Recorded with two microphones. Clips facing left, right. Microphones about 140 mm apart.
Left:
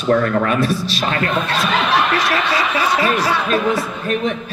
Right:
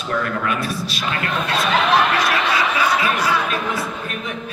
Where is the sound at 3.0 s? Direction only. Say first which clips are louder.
Left 2 dB; 35° left (ahead or behind).